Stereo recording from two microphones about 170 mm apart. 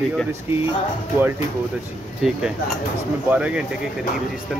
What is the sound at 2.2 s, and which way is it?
Speech, centre (ahead or behind).